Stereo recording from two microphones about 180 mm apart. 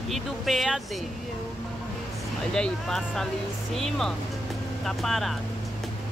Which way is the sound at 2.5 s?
5° left (ahead or behind).